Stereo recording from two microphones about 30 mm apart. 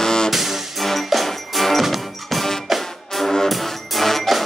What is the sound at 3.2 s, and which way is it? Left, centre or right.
Brass instrument, centre.